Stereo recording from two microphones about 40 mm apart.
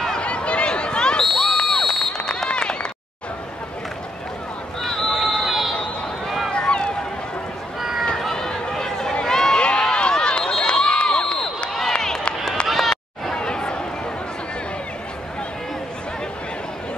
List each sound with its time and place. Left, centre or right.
0.2 s a sound: left
1.2 s a sound: centre
2.2 s run: left
4.8 s run: centre
6.5 s run: left
8.2 s run: centre
8.5 s a sound: centre
9.2 s run: centre
10.6 s crowd: left
12.0 s run: centre
13.3 s chatter: left